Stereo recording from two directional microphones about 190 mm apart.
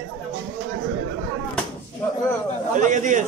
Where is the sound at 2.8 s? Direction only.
40° right (ahead or behind).